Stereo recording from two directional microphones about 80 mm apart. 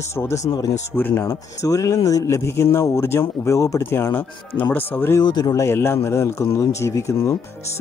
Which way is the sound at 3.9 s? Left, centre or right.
Left.